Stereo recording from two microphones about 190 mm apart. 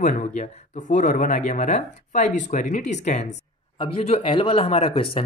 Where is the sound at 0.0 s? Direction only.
40° left (ahead or behind).